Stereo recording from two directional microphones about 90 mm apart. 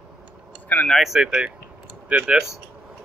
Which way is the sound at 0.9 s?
5° right (ahead or behind).